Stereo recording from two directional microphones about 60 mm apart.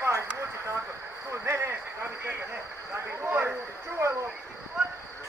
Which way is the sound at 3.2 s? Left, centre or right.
Right.